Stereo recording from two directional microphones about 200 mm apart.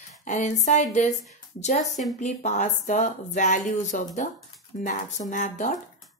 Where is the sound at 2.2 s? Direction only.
35° left (ahead or behind).